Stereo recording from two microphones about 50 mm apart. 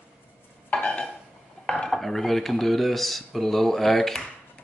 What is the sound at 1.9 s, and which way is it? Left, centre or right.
Speech, centre.